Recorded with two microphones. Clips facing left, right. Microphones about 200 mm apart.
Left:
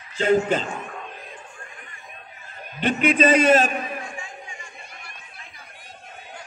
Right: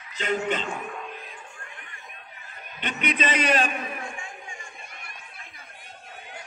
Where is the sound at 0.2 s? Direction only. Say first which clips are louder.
Left 7 dB; 35° left (ahead or behind).